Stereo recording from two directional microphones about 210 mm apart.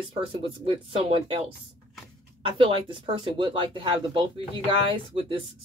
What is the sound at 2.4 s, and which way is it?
Speech, 25° right (ahead or behind).